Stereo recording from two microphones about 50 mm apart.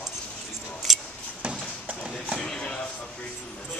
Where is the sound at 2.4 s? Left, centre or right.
Centre.